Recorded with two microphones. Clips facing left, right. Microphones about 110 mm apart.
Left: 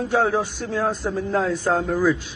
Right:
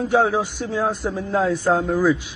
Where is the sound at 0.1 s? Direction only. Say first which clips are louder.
Right 2 dB; 15° right (ahead or behind).